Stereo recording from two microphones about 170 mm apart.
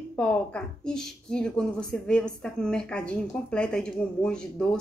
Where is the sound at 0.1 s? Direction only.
5° left (ahead or behind).